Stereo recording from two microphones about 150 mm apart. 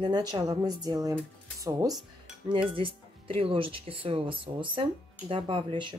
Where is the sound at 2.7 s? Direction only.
35° right (ahead or behind).